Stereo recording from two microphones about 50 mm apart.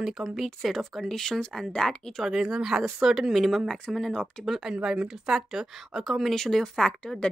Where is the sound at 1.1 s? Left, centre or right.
Centre.